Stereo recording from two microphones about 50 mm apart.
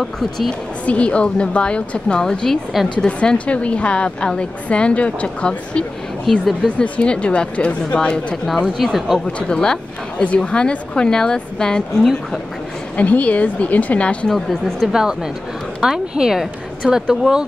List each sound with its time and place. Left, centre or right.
0.0 s speech: centre
0.8 s a woman's voice: left
6.3 s speech: centre
6.8 s a woman's voice: left
8.7 s speech: centre
9.5 s a woman's voice: centre
12.9 s a woman's voice: left
14.3 s speech: centre
14.9 s speech: centre